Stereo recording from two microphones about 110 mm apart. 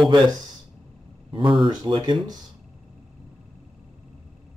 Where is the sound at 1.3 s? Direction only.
45° right (ahead or behind).